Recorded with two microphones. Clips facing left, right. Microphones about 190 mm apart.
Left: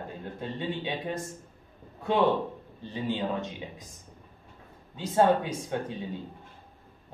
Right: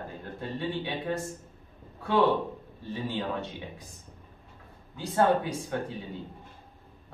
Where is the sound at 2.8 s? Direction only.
20° left (ahead or behind).